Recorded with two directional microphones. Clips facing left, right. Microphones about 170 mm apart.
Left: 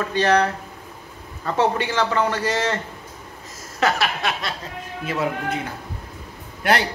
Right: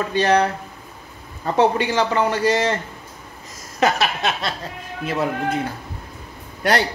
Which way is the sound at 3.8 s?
20° right (ahead or behind).